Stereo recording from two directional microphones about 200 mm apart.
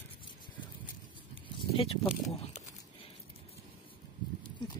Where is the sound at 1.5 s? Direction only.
25° left (ahead or behind).